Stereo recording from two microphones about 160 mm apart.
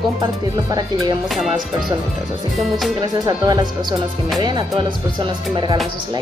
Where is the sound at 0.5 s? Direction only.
25° right (ahead or behind).